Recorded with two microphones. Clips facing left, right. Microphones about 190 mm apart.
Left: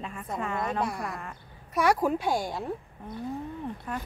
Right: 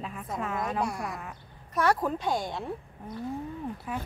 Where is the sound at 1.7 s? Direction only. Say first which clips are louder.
Left 2 dB; 10° left (ahead or behind).